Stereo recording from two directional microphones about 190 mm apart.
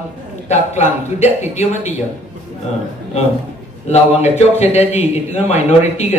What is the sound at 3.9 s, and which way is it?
Speech, 35° left (ahead or behind).